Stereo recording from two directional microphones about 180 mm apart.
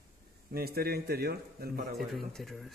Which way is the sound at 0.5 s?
55° right (ahead or behind).